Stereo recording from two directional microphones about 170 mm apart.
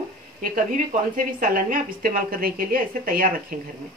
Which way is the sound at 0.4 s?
55° right (ahead or behind).